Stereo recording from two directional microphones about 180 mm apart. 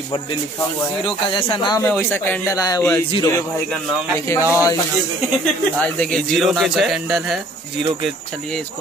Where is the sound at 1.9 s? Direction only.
10° left (ahead or behind).